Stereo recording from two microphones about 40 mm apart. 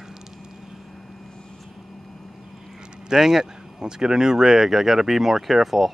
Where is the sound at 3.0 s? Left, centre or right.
Centre.